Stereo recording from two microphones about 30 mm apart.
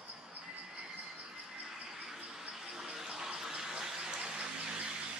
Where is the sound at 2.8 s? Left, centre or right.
Centre; by 4.9 s right.